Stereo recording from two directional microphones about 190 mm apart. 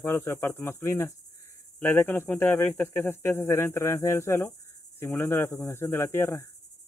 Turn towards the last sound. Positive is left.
turn(degrees=15)  # may be behind; listen again after turning